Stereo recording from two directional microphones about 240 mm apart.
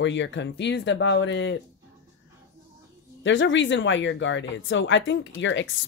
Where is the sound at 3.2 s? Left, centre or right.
Left.